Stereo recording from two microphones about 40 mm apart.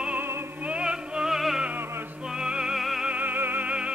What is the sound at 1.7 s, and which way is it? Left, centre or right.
Music, right.